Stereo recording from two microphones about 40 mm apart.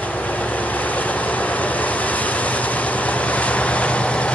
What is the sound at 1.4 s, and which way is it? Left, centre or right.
Vehicle, left.